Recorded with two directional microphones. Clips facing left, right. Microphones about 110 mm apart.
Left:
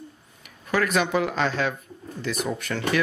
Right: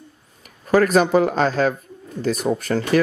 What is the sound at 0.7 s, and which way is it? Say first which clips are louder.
Speech: right 8 dB; 40° right (ahead or behind).